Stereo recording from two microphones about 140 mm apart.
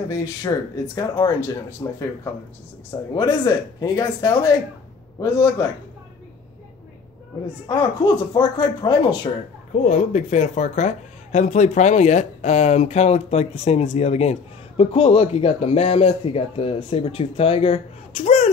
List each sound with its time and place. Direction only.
0.1 s speech: 25° left (ahead or behind)
3.2 s speech: 30° left (ahead or behind)
7.6 s speech: 30° left (ahead or behind)
9.8 s speech: 60° left (ahead or behind)